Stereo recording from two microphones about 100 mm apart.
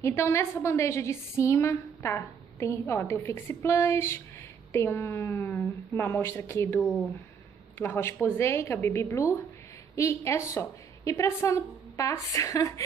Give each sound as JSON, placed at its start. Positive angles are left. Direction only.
{"t": 0.0, "sound": "a woman's voice", "side_deg": 25}
{"t": 7.8, "sound": "a woman's voice", "side_deg": 25}